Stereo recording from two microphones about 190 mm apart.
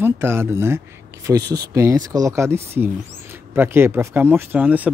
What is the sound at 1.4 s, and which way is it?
Speech, 55° right (ahead or behind).